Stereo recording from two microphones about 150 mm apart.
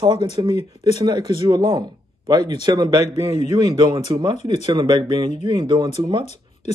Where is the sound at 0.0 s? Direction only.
30° right (ahead or behind).